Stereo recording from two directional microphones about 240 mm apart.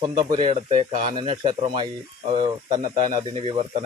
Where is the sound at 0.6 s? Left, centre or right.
Right.